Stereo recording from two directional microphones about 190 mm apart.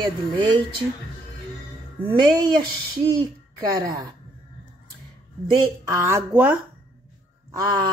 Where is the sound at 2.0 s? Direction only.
20° right (ahead or behind).